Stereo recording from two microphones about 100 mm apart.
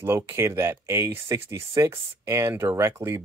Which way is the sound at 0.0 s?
25° right (ahead or behind).